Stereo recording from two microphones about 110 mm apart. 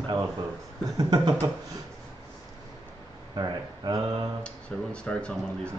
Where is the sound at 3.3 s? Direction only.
40° right (ahead or behind).